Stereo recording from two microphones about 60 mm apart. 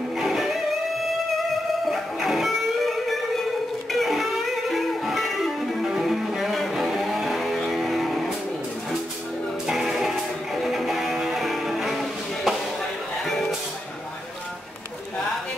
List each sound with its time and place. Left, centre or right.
0.2 s music: centre
1.9 s music: centre
9.7 s music: centre